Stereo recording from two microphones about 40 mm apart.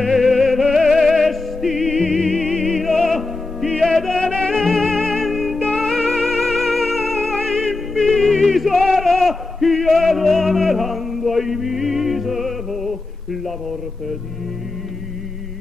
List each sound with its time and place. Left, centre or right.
0.0 s music: centre
4.2 s music: centre
4.5 s music: centre